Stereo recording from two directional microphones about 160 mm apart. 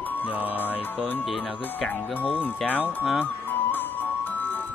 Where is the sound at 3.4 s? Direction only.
10° left (ahead or behind).